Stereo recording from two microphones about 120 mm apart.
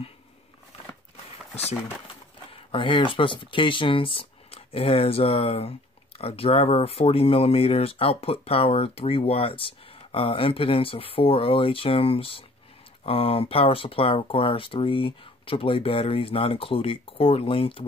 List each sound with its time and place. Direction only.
2.0 s speech: 45° left (ahead or behind)